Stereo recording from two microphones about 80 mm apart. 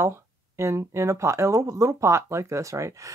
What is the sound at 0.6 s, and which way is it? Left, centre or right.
Speech, right.